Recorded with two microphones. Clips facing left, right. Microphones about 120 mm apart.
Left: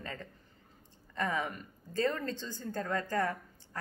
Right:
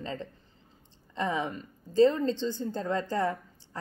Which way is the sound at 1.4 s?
30° right (ahead or behind).